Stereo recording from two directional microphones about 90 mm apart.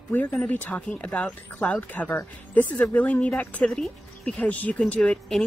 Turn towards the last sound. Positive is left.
turn(degrees=10)  # may be behind; listen again after turning